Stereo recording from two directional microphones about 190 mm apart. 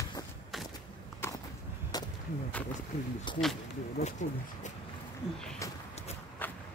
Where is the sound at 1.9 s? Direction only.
20° left (ahead or behind).